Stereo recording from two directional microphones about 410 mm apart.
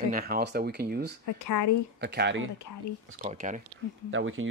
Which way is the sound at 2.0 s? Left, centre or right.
Right.